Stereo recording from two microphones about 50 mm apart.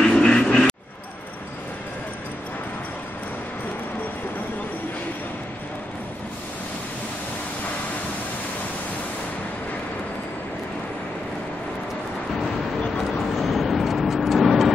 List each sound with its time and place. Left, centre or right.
0.0 s music: centre
13.4 s vehicle: centre